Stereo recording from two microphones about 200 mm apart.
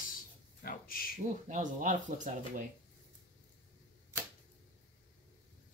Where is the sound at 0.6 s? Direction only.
45° left (ahead or behind).